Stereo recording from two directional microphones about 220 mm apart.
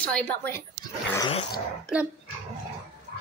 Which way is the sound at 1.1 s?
20° left (ahead or behind).